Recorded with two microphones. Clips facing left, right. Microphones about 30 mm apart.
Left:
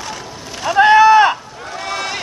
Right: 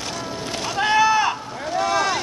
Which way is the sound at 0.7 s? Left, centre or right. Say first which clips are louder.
Left 9 dB; left.